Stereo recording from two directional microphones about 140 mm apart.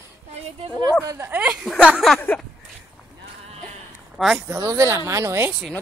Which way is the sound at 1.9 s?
Centre (ahead or behind).